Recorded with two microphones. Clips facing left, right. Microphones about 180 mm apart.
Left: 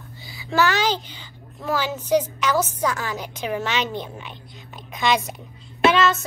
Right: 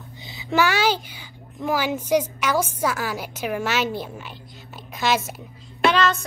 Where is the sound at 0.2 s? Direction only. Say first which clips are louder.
Even; 20° right (ahead or behind).